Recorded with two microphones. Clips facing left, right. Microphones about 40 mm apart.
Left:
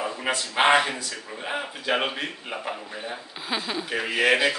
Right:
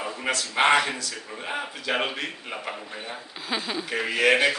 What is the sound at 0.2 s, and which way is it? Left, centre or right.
A man's voice, centre.